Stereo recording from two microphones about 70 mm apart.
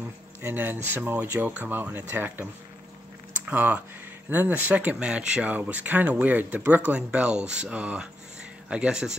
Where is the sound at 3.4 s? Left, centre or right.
Right.